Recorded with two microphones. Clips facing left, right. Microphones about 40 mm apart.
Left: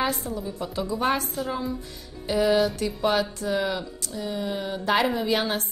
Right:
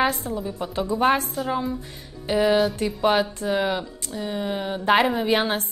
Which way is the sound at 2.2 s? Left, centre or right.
Centre.